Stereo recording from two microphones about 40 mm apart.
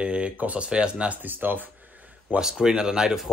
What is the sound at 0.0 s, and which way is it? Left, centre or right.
Speech, right.